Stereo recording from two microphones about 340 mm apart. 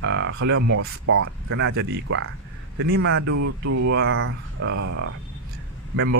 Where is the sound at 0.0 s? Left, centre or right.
Right.